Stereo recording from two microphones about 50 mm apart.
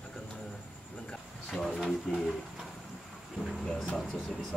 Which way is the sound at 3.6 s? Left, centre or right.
Centre.